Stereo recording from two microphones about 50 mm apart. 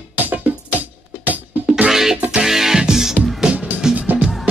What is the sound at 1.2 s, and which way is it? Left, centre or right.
Music, right.